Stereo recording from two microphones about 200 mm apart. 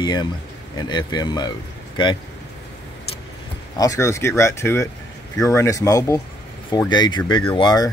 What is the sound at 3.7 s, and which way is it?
Speech, 15° left (ahead or behind).